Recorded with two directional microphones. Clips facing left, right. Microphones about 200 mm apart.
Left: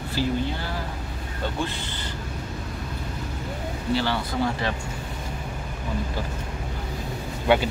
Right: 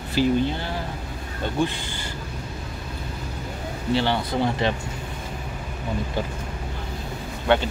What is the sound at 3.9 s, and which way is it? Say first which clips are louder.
Speech: right 3 dB; 25° right (ahead or behind).